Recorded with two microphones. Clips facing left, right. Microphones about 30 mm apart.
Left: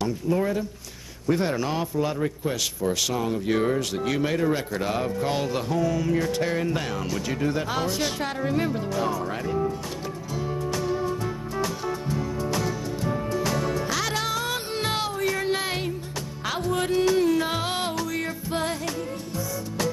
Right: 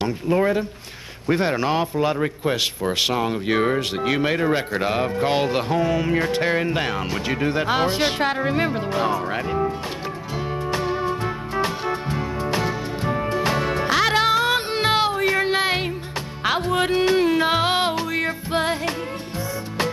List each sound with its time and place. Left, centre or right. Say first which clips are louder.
0.0 s a man's voice: right 4 dB; right
10.7 s music: right 4 dB; right